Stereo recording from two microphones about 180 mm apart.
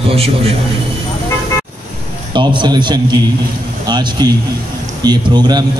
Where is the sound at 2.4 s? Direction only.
25° right (ahead or behind).